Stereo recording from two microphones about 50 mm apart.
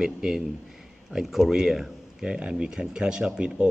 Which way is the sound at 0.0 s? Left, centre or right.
Centre.